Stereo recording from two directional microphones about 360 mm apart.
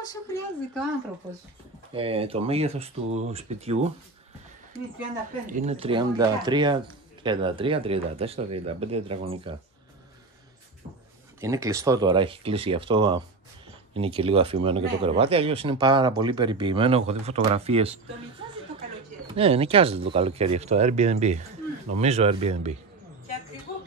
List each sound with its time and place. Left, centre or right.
0.0 s a woman's voice: centre
2.0 s speech: centre
5.5 s speech: centre
11.4 s speech: centre
19.2 s speech: centre